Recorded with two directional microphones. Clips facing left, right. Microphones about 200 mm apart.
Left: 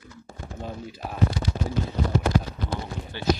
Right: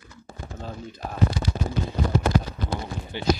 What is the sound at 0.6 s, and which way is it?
Speech, 10° left (ahead or behind).